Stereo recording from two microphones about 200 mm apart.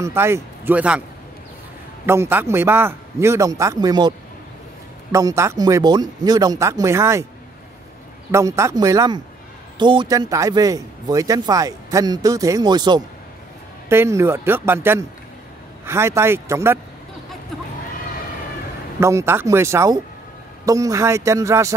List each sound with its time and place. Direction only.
0.0 s speech: 10° right (ahead or behind)
2.0 s speech: 10° right (ahead or behind)
5.1 s speech: 15° right (ahead or behind)
8.3 s speech: 15° right (ahead or behind)
18.9 s speech: 15° right (ahead or behind)